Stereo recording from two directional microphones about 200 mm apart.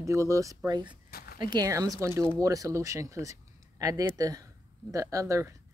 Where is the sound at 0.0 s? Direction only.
15° right (ahead or behind).